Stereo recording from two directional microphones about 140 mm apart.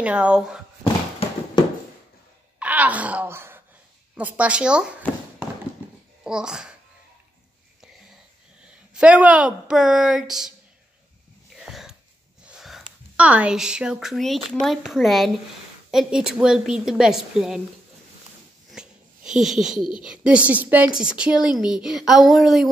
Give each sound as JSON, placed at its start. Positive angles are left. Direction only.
{"t": 0.0, "sound": "a woman's voice", "side_deg": -10}
{"t": 2.6, "sound": "wail", "side_deg": -10}
{"t": 4.2, "sound": "a woman's voice", "side_deg": -10}
{"t": 6.2, "sound": "a child's voice", "side_deg": -5}
{"t": 8.6, "sound": "a woman's voice", "side_deg": -10}
{"t": 11.5, "sound": "a sound", "side_deg": -5}
{"t": 12.4, "sound": "a woman's voice", "side_deg": -5}
{"t": 18.7, "sound": "a sound", "side_deg": -5}
{"t": 19.8, "sound": "speech", "side_deg": 35}
{"t": 20.1, "sound": "a woman's voice", "side_deg": -10}